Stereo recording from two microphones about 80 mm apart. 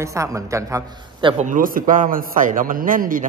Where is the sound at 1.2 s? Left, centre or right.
Right.